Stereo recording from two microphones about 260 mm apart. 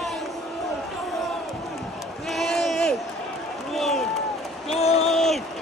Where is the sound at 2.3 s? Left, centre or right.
Centre.